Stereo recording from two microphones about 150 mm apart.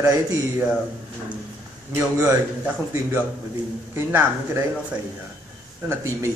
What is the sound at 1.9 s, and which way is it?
Speech, 10° right (ahead or behind).